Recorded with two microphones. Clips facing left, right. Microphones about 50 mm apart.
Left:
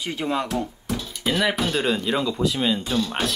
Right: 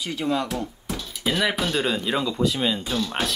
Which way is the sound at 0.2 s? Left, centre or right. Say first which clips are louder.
Right 1 dB; left.